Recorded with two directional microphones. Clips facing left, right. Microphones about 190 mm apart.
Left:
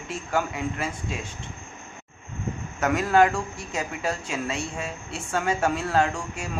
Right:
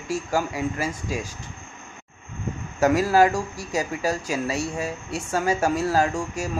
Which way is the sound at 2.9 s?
5° right (ahead or behind).